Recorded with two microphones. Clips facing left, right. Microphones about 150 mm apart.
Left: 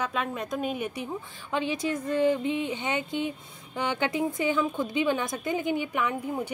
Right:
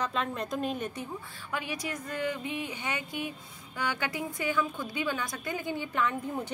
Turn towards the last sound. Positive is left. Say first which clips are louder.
# left 3 dB
turn(degrees=15)  # may be behind; listen again after turning